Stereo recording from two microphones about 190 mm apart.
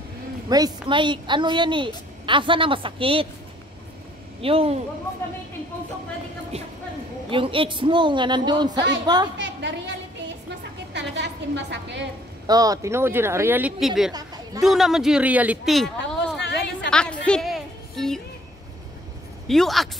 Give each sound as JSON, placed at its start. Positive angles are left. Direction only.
{"t": 0.5, "sound": "a woman's voice", "side_deg": -20}
{"t": 4.4, "sound": "a woman's voice", "side_deg": -30}
{"t": 7.2, "sound": "a woman's voice", "side_deg": -25}
{"t": 9.4, "sound": "a sound", "side_deg": -70}
{"t": 12.4, "sound": "speech", "side_deg": -20}
{"t": 14.1, "sound": "chatter", "side_deg": -20}
{"t": 14.6, "sound": "speech", "side_deg": 0}
{"t": 16.3, "sound": "a sound", "side_deg": 60}
{"t": 16.9, "sound": "music", "side_deg": 5}
{"t": 19.4, "sound": "speech", "side_deg": 0}